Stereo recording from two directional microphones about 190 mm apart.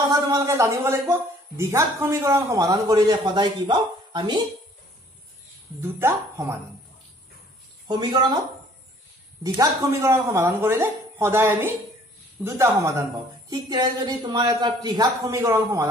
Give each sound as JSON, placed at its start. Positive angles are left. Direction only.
{"t": 0.1, "sound": "a man's voice", "side_deg": -20}
{"t": 5.8, "sound": "a man's voice", "side_deg": -15}
{"t": 7.9, "sound": "a woman's voice", "side_deg": -25}
{"t": 9.4, "sound": "a man's voice", "side_deg": -15}